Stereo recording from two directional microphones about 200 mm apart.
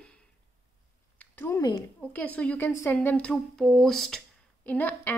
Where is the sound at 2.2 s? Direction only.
5° left (ahead or behind).